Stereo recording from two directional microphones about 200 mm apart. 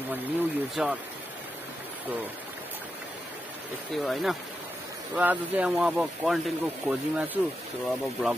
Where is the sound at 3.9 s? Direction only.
Centre (ahead or behind).